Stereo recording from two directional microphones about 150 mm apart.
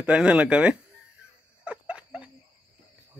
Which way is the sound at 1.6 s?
5° right (ahead or behind).